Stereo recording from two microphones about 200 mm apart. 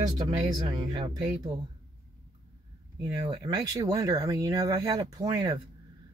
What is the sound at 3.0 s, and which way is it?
Speech, 20° right (ahead or behind).